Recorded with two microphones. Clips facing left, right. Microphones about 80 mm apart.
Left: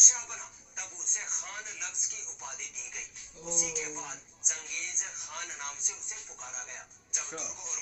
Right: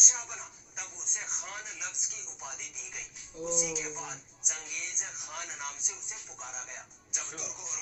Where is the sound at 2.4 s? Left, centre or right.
Centre.